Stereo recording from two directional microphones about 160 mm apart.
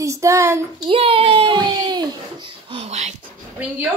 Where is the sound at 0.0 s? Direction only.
20° right (ahead or behind).